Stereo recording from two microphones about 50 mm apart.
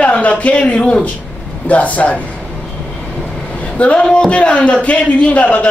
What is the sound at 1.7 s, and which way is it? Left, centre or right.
Speech, left.